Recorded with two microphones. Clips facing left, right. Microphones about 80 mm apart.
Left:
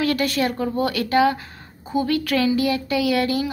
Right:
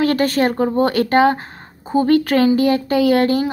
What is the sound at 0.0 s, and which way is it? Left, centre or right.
Speech, right.